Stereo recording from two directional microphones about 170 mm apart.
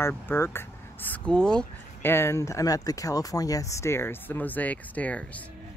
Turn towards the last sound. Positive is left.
turn(degrees=10)  # may be behind; listen again after turning